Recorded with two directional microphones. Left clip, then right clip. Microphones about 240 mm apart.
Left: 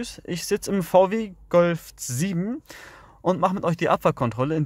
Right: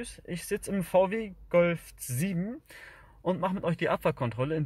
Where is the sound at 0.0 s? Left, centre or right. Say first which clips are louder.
Left 8 dB; left.